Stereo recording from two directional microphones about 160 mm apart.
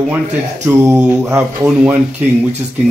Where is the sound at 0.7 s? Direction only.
15° right (ahead or behind).